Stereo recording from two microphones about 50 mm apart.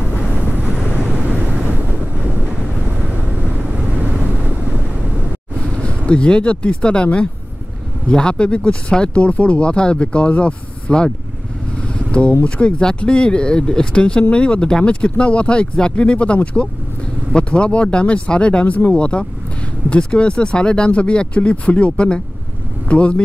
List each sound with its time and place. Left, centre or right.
0.0 s vehicle: right
1.2 s vehicle: right
3.2 s wind noise: right
5.8 s speech: left
11.9 s vehicle: left
12.4 s speech: left
17.4 s speech: left